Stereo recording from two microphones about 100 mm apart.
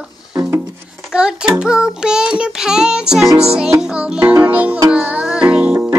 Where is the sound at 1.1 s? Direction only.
10° right (ahead or behind).